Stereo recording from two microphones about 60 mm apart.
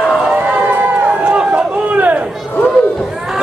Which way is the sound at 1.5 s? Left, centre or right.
Right.